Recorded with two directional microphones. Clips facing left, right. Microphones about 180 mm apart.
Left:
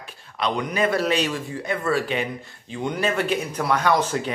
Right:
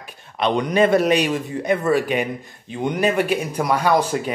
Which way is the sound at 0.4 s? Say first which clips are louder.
Right 6 dB; 25° right (ahead or behind).